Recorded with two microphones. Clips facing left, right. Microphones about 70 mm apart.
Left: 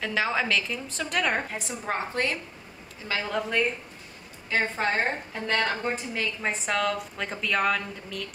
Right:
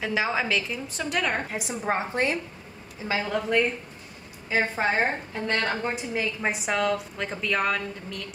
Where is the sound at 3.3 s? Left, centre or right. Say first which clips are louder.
Right 2 dB; centre.